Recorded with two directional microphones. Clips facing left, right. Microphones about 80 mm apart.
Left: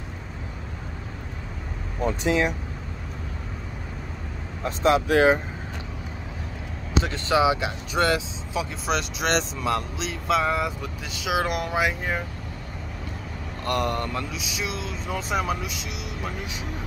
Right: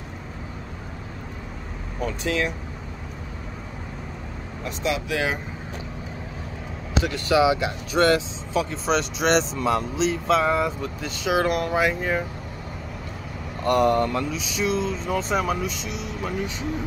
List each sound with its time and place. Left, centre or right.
2.0 s speech: left
4.6 s speech: left
7.0 s speech: left; by 12.2 s centre
13.7 s speech: centre